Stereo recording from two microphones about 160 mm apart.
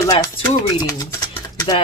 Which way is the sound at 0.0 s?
20° left (ahead or behind).